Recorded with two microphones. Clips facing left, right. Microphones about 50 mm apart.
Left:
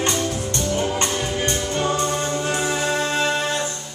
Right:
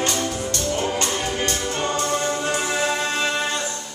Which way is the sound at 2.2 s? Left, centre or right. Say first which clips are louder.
Even; centre.